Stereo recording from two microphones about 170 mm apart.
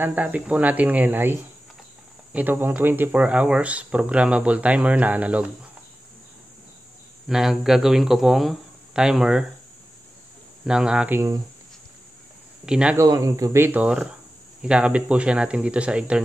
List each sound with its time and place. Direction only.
0.0 s speech: 10° right (ahead or behind)
7.2 s speech: centre (ahead or behind)
10.6 s speech: 5° right (ahead or behind)
12.6 s speech: 5° right (ahead or behind)
12.9 s speech: 20° right (ahead or behind)